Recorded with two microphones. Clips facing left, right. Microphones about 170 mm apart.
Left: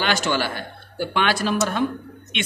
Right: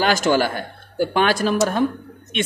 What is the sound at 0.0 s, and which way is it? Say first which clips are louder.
Speech: right 5 dB; 45° right (ahead or behind).